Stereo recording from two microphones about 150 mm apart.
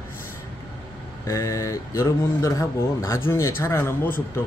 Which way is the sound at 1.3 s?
20° left (ahead or behind).